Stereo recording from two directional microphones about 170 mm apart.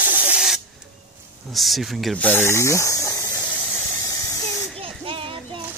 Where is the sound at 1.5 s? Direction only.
Centre (ahead or behind).